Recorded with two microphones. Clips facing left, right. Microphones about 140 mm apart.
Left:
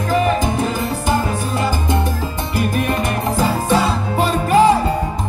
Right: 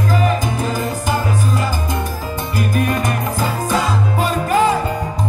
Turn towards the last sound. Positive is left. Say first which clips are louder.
# left 3 dB
turn(degrees=35)  # may be behind; listen again after turning